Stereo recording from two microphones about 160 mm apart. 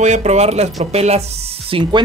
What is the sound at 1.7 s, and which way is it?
Speech, 30° right (ahead or behind).